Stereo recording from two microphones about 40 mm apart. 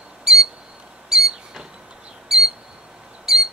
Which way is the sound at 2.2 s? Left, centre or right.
Centre.